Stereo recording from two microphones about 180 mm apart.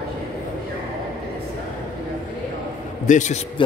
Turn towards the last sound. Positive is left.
turn(degrees=40)  # may be behind; listen again after turning